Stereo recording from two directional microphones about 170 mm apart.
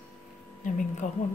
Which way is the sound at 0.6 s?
50° left (ahead or behind).